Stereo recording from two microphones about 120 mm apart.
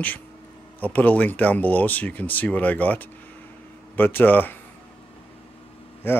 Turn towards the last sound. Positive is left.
turn(degrees=20)  # may be behind; listen again after turning